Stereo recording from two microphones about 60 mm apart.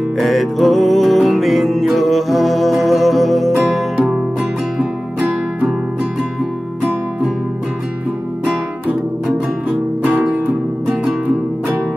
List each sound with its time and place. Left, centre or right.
0.2 s music: centre
9.7 s music: right